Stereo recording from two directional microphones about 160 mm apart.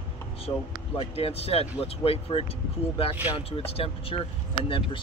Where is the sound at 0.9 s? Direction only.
40° left (ahead or behind).